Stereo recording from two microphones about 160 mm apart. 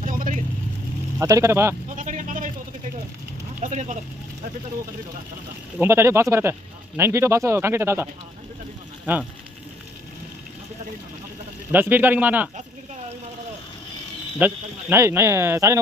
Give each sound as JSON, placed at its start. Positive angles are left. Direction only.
{"t": 0.0, "sound": "vehicle", "side_deg": -55}
{"t": 1.2, "sound": "speech", "side_deg": -20}
{"t": 2.0, "sound": "a sound", "side_deg": -50}
{"t": 3.6, "sound": "speech", "side_deg": -50}
{"t": 5.8, "sound": "speech", "side_deg": -15}
{"t": 11.7, "sound": "speech", "side_deg": -10}
{"t": 14.4, "sound": "speech", "side_deg": -15}